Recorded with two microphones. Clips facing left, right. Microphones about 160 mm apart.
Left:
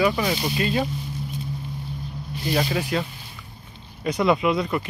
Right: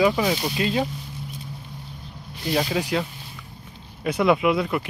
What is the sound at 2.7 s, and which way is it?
Speech, 15° right (ahead or behind).